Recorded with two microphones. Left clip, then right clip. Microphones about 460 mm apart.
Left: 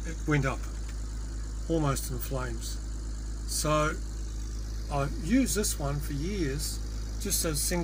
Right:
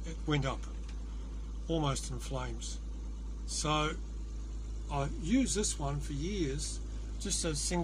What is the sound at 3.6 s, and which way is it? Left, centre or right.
Speech, right.